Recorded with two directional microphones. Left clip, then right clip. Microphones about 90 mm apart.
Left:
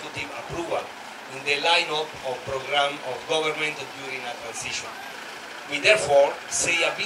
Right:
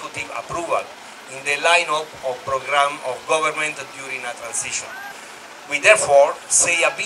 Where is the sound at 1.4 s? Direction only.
40° right (ahead or behind).